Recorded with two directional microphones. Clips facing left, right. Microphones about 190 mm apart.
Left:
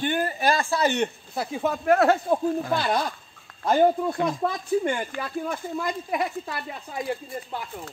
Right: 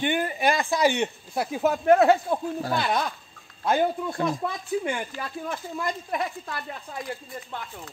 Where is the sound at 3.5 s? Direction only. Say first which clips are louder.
Left 4 dB; 60° left (ahead or behind).